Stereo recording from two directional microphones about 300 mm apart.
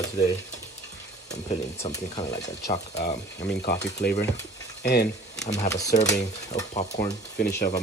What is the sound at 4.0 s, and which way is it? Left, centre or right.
Speech, left.